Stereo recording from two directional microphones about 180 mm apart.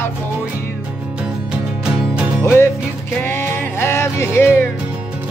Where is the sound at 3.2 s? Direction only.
10° left (ahead or behind).